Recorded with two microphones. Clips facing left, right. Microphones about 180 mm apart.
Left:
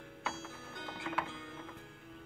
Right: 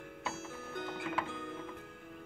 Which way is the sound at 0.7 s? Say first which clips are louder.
Right 2 dB; 50° right (ahead or behind).